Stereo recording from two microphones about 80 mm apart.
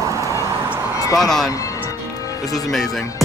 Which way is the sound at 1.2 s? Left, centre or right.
Centre.